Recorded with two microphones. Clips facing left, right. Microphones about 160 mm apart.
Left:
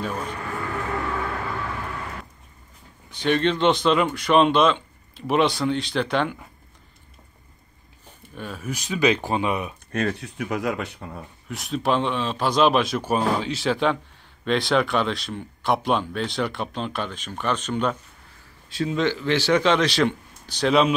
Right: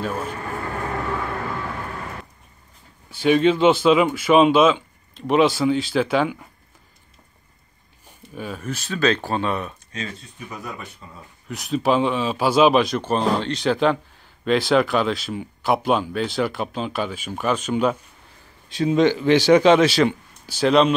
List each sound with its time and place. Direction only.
0.0 s speech: 5° right (ahead or behind)
3.1 s speech: 5° right (ahead or behind)
8.4 s speech: centre (ahead or behind)
8.6 s speech: 15° left (ahead or behind)
9.9 s speech: 65° left (ahead or behind)
11.4 s a man's voice: centre (ahead or behind)